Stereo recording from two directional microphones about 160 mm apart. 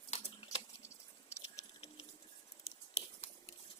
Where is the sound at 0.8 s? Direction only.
20° left (ahead or behind).